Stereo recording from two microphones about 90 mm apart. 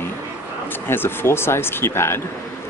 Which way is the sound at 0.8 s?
25° left (ahead or behind).